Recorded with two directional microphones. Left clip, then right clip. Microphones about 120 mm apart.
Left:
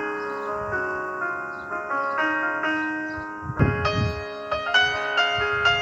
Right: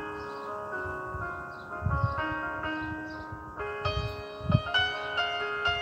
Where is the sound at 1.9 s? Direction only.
35° left (ahead or behind).